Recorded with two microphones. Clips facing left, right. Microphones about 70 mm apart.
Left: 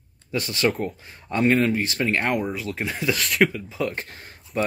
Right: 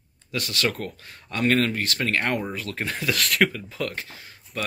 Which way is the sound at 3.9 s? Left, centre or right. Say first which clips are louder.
Left 2 dB; left.